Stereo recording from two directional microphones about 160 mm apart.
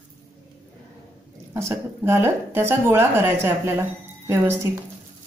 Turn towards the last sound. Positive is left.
turn(degrees=-15)  # may be behind; listen again after turning